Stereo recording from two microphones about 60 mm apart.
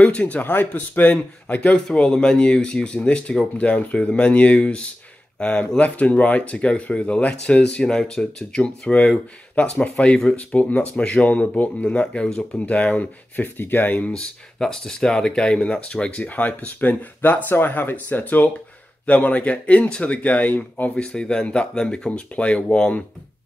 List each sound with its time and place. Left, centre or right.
0.0 s a man's voice: left
0.4 s speech: left
1.9 s speech: centre; by 13.9 s left
13.9 s speech: left
14.6 s speech: centre; by 20.9 s left
20.9 s speech: centre